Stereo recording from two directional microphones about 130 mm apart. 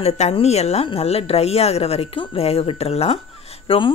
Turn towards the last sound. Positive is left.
turn(degrees=40)  # may be behind; listen again after turning